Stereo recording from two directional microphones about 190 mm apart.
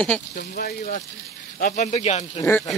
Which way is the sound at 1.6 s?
40° left (ahead or behind).